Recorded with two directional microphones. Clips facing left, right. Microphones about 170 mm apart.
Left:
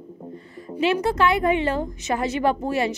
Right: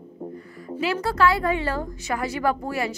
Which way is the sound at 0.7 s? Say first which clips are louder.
Left 4 dB; 20° left (ahead or behind).